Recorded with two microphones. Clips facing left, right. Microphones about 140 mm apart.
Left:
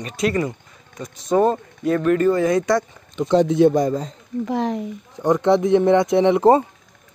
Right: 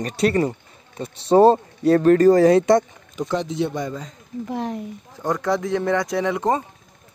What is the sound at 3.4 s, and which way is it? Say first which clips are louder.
Speech: left 9 dB; 55° left (ahead or behind).